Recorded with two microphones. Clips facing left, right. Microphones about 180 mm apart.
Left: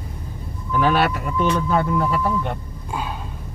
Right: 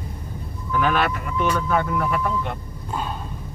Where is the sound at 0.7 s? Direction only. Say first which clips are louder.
Left 3 dB; 30° left (ahead or behind).